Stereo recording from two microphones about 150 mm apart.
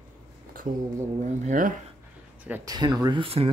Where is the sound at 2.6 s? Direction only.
30° right (ahead or behind).